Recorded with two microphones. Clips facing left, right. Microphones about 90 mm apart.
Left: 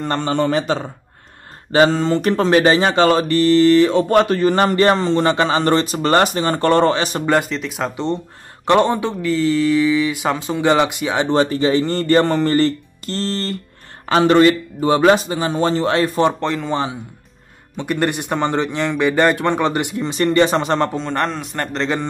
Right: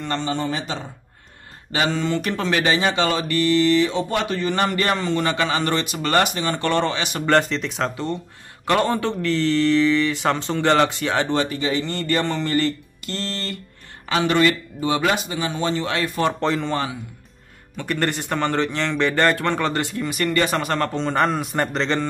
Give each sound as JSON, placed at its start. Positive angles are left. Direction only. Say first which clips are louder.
{"t": 0.0, "sound": "a man's voice", "louder": "left 6 dB", "side_deg": 50}
{"t": 1.7, "sound": "speech", "louder": "left 8 dB", "side_deg": 40}
{"t": 7.2, "sound": "a man's voice", "louder": "right 2 dB", "side_deg": 5}
{"t": 7.9, "sound": "a man's voice", "louder": "left 5 dB", "side_deg": 25}
{"t": 9.2, "sound": "a man's voice", "louder": "left 3 dB", "side_deg": 5}
{"t": 11.2, "sound": "speech", "louder": "left 6 dB", "side_deg": 35}
{"t": 16.3, "sound": "a man's voice", "louder": "left 1 dB", "side_deg": 0}
{"t": 17.7, "sound": "a man's voice", "louder": "left 4 dB", "side_deg": 15}
{"t": 20.9, "sound": "a man's voice", "louder": "right 1 dB", "side_deg": 0}